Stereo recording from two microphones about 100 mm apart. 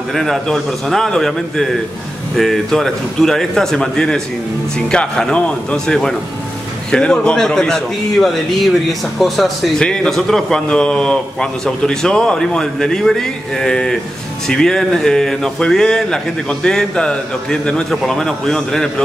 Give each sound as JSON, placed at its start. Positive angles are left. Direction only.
{"t": 0.1, "sound": "a man's voice", "side_deg": 5}